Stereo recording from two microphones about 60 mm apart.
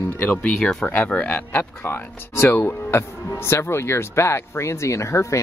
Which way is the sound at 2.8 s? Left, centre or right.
Left.